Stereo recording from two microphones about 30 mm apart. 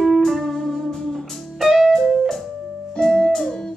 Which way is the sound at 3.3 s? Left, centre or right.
Centre.